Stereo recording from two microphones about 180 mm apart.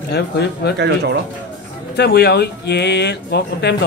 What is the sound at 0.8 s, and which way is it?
Speech, 70° right (ahead or behind).